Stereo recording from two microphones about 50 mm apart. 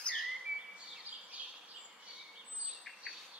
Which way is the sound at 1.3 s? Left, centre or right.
Right.